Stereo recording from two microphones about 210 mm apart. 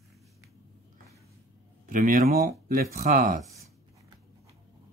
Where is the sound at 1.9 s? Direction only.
40° right (ahead or behind).